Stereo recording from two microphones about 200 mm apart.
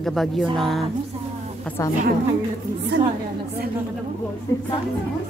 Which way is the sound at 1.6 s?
10° left (ahead or behind).